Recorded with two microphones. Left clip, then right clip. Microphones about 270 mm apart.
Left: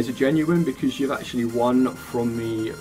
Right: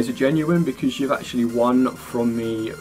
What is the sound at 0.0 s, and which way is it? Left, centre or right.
Speech, centre.